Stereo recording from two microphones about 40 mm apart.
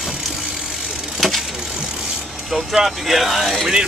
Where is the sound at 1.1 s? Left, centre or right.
Centre.